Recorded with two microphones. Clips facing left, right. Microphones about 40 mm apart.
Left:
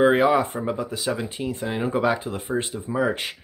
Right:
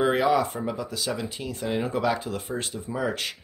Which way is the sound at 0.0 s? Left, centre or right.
Left.